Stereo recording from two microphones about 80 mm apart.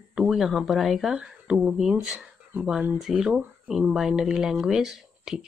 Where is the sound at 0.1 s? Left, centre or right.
Centre.